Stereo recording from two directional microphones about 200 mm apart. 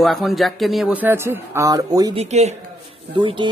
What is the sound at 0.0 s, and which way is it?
Speech, centre (ahead or behind).